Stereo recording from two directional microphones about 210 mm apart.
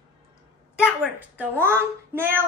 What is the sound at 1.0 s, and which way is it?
A woman's voice, 5° right (ahead or behind).